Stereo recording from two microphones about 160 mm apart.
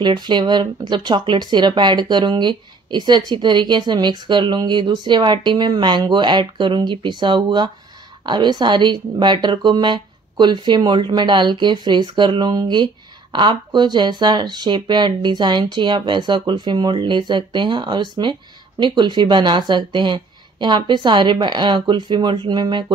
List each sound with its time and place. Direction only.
0.0 s a woman's voice: 30° right (ahead or behind)